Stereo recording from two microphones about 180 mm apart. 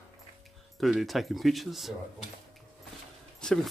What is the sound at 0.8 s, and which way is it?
Speech, centre (ahead or behind).